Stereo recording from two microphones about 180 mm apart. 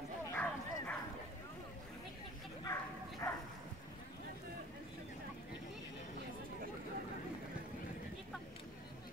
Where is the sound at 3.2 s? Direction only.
15° left (ahead or behind).